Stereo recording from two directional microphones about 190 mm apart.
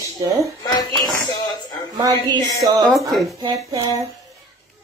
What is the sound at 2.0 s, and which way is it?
Speech, 20° right (ahead or behind).